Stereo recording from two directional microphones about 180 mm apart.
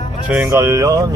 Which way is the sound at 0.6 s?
15° right (ahead or behind).